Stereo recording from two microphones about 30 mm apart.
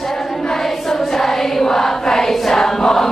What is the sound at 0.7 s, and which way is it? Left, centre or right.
Choir, centre.